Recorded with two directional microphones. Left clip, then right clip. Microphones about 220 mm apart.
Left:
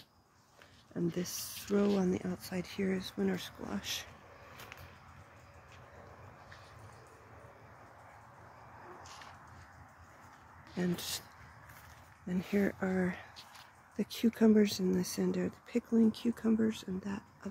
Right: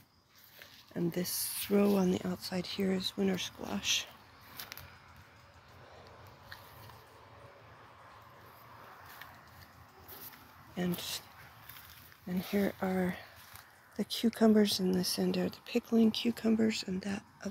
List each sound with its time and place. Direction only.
0.9 s speech: centre (ahead or behind)
10.7 s speech: 25° left (ahead or behind)
12.3 s speech: 15° left (ahead or behind)
16.0 s speech: 5° left (ahead or behind)